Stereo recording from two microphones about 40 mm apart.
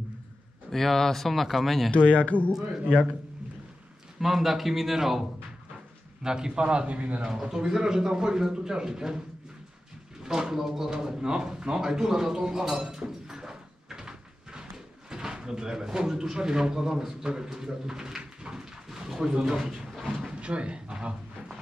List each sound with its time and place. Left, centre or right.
0.7 s speech: centre
1.9 s speech: left
4.2 s a man's voice: centre
6.2 s a man's voice: centre; by 7.2 s right
7.2 s a man's voice: centre
10.2 s speech: centre
18.9 s a sound: centre
19.4 s a man's voice: centre
20.3 s speech: right